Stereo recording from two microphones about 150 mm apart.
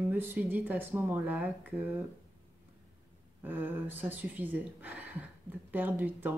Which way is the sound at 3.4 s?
15° right (ahead or behind).